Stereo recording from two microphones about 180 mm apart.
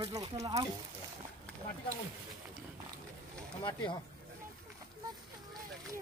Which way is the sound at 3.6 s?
25° left (ahead or behind).